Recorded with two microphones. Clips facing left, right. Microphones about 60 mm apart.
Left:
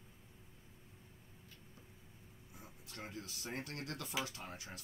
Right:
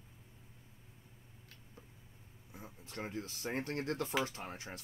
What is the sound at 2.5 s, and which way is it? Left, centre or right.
Speech, right.